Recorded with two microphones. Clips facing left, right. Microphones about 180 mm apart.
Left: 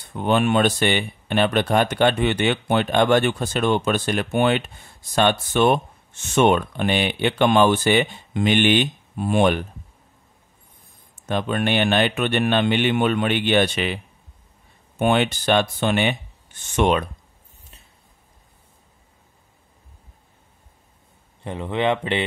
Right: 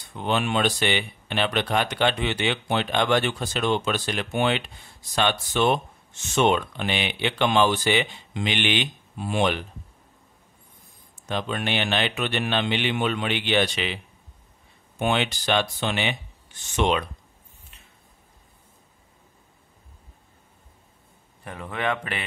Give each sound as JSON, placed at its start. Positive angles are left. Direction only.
{"t": 0.0, "sound": "speech", "side_deg": 50}
{"t": 11.2, "sound": "speech", "side_deg": 50}
{"t": 15.0, "sound": "speech", "side_deg": 50}
{"t": 21.5, "sound": "speech", "side_deg": 25}